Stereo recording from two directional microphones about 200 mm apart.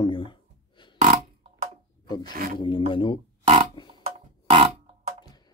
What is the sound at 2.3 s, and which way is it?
Speech, 45° right (ahead or behind).